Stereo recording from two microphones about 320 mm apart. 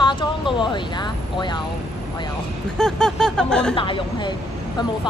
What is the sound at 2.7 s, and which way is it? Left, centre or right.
Speech, centre.